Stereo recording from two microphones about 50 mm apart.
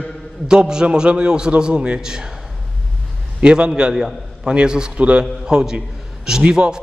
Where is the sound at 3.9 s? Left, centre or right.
Centre.